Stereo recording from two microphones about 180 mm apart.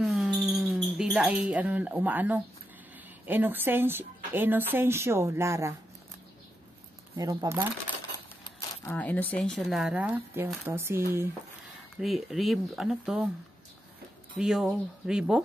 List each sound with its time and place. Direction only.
0.0 s music: centre (ahead or behind)
3.3 s a woman's voice: 10° right (ahead or behind)
7.2 s speech: 20° right (ahead or behind)
8.5 s speech: 10° left (ahead or behind); by 11.2 s 15° right (ahead or behind)
12.0 s speech: centre (ahead or behind)
14.3 s speech: centre (ahead or behind)